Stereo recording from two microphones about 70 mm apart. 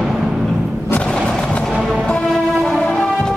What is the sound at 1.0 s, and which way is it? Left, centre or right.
Skateboard, centre.